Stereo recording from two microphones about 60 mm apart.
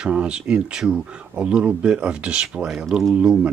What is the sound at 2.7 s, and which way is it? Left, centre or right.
Speech, centre.